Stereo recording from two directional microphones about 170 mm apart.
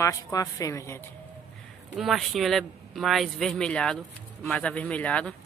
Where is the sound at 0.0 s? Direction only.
20° left (ahead or behind).